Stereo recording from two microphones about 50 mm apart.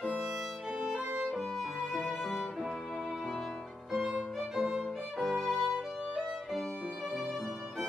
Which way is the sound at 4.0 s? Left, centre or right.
Centre.